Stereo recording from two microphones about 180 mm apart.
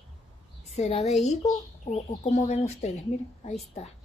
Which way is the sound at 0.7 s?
35° left (ahead or behind).